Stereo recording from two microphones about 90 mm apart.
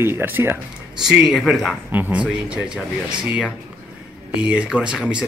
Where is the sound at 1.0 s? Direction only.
5° right (ahead or behind).